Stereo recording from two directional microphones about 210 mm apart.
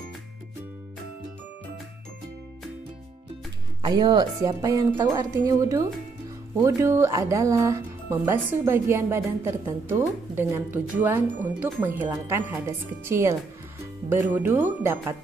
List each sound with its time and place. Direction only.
3.8 s a woman's voice: 20° right (ahead or behind)